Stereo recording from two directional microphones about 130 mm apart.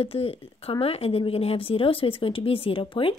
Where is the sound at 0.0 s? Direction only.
45° left (ahead or behind).